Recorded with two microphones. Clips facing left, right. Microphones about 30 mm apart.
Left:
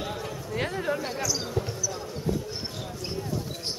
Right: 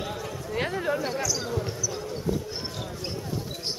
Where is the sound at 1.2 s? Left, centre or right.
Centre.